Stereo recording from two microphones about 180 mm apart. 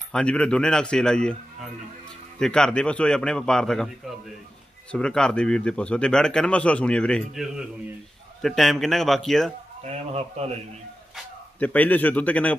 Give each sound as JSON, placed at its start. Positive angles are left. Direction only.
{"t": 0.1, "sound": "speech", "side_deg": 5}
{"t": 4.9, "sound": "speech", "side_deg": 5}
{"t": 9.8, "sound": "a man's voice", "side_deg": -35}
{"t": 11.6, "sound": "speech", "side_deg": 10}